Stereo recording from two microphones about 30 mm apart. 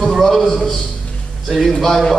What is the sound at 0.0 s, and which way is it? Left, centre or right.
Speech, centre.